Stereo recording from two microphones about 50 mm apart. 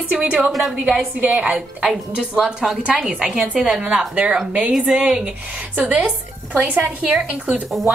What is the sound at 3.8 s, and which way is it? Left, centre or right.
Speech, centre.